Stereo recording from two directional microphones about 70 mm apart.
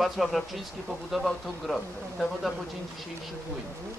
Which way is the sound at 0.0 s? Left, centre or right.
Centre.